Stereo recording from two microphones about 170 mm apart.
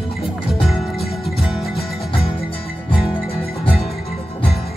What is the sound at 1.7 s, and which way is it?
Music, 35° left (ahead or behind).